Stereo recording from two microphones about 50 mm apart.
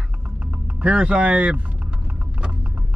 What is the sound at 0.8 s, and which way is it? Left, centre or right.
Speech, right.